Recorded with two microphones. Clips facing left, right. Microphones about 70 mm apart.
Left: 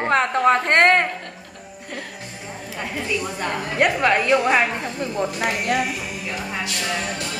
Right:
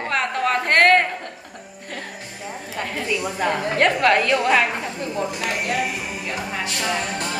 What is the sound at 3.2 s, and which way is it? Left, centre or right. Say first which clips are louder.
Speech: right 3 dB; centre.